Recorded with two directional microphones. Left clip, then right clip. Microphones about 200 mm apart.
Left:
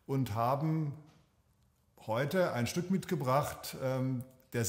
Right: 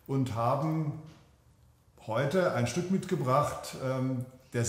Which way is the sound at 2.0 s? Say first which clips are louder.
Right 3 dB; 30° left (ahead or behind).